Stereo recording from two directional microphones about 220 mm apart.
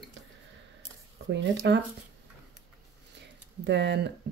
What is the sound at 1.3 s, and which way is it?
Speech, 50° right (ahead or behind).